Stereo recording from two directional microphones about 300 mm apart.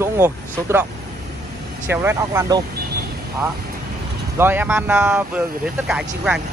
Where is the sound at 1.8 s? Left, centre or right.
Centre.